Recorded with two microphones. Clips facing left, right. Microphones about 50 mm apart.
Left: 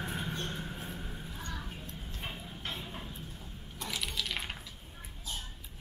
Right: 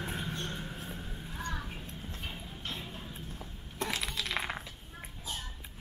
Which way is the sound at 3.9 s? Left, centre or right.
Right.